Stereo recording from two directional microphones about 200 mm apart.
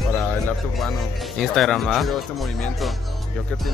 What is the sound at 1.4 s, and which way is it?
Speech, centre (ahead or behind).